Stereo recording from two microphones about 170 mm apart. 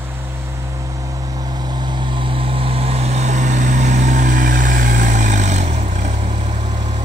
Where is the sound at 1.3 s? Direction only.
25° right (ahead or behind); by 6.5 s 40° right (ahead or behind).